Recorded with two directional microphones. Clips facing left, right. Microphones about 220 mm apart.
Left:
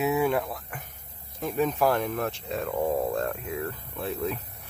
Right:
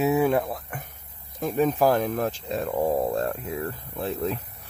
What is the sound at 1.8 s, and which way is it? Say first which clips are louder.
Speech: right 3 dB; 35° right (ahead or behind).